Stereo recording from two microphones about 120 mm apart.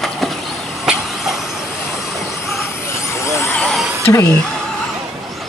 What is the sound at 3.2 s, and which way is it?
Vehicle, 20° left (ahead or behind).